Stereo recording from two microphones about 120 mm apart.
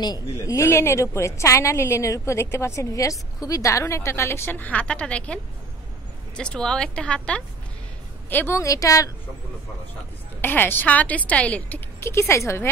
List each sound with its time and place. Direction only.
0.0 s a woman's voice: 30° left (ahead or behind); by 7.4 s 10° left (ahead or behind)
8.3 s a woman's voice: 20° left (ahead or behind)
10.4 s a woman's voice: 15° left (ahead or behind)
12.0 s a woman's voice: 25° left (ahead or behind)